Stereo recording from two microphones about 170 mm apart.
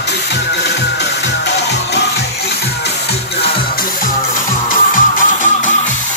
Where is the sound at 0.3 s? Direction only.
90° left.